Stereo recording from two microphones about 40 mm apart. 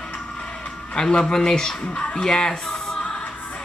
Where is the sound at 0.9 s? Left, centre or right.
Centre.